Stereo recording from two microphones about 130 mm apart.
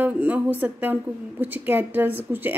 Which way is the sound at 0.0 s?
10° right (ahead or behind).